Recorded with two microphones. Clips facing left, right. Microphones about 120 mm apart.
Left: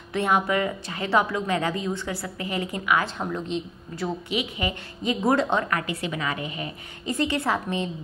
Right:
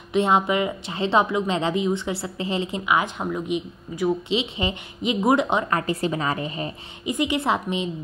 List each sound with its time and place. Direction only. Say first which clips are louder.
0.1 s a woman's voice: right 3 dB; 20° right (ahead or behind)
4.3 s a woman's voice: right 3 dB; 25° right (ahead or behind)
5.7 s a woman's voice: right 4 dB; 35° right (ahead or behind)
7.1 s speech: right 2 dB; 15° right (ahead or behind)